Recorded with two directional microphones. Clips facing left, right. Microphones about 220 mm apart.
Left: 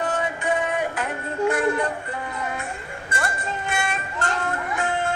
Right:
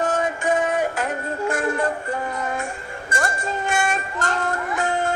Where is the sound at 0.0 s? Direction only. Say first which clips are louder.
Right 3 dB; 45° right (ahead or behind).